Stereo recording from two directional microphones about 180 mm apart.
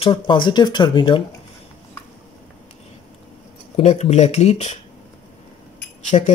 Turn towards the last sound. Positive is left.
turn(degrees=40)  # may be behind; listen again after turning